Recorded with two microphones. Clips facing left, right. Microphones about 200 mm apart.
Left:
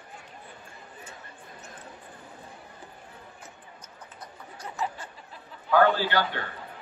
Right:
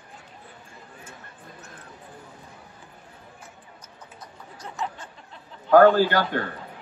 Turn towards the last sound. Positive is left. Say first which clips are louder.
# right 6 dB
turn(degrees=-45)  # may be behind; listen again after turning